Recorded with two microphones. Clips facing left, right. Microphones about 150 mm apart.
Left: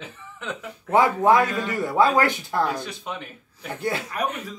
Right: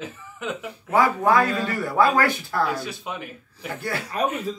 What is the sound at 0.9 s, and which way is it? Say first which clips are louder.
Speech: left 2 dB; 20° left (ahead or behind).